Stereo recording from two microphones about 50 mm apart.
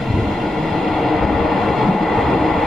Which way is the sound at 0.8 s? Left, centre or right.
Centre.